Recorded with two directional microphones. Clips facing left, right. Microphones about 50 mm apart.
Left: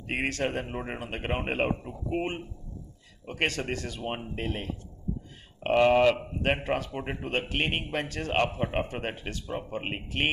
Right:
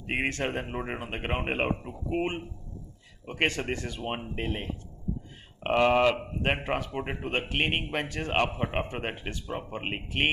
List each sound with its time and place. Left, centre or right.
0.0 s speech: centre
3.3 s speech: right